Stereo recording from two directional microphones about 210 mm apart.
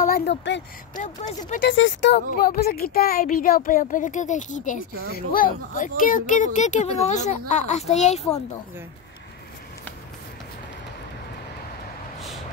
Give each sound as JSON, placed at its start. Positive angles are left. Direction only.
{"t": 0.0, "sound": "speech", "side_deg": 50}
{"t": 0.9, "sound": "speech", "side_deg": 35}
{"t": 1.7, "sound": "speech", "side_deg": 60}